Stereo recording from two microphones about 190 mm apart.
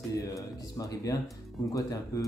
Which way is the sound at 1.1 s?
20° left (ahead or behind).